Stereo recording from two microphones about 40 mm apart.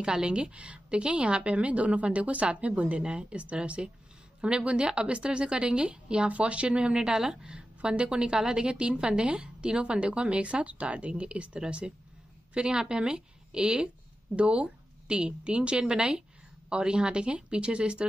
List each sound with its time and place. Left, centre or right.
0.0 s a woman's voice: right